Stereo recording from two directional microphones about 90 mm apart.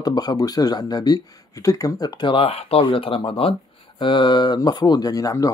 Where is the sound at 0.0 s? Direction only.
50° left (ahead or behind); by 3.5 s 90° left.